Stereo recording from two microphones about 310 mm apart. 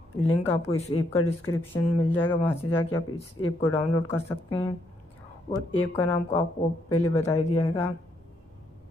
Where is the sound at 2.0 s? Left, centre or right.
Centre.